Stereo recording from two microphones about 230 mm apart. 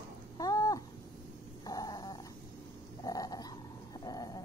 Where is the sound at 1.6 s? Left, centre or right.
Centre.